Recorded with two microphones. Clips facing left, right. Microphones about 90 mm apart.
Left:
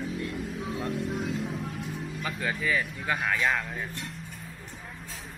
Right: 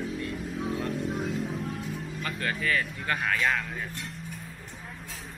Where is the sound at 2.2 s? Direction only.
10° left (ahead or behind).